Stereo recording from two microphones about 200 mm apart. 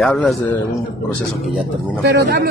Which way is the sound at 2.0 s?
55° right (ahead or behind).